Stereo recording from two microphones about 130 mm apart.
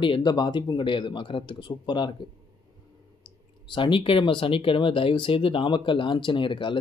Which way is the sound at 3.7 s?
40° left (ahead or behind).